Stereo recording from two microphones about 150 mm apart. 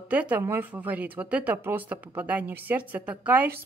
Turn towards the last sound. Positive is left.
turn(degrees=-10)  # may be behind; listen again after turning